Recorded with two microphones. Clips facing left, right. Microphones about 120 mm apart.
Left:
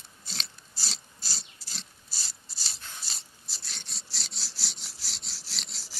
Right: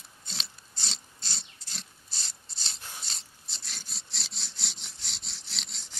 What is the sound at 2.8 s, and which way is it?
Dog, 15° right (ahead or behind).